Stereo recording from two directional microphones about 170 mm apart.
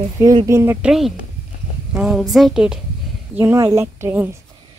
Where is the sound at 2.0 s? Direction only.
Centre (ahead or behind).